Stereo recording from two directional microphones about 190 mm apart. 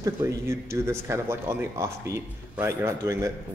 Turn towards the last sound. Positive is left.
turn(degrees=-15)  # may be behind; listen again after turning